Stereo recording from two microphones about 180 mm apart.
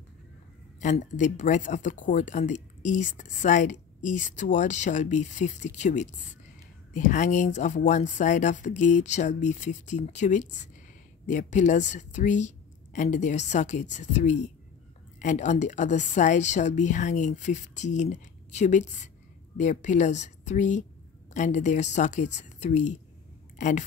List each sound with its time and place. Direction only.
0.7 s speech: 45° left (ahead or behind)